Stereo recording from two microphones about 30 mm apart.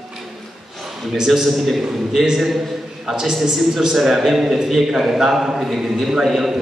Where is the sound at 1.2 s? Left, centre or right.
Centre.